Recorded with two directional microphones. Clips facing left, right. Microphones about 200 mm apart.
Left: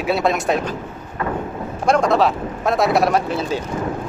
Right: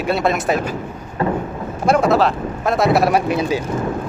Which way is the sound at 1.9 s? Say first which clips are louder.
Right 1 dB; 5° right (ahead or behind).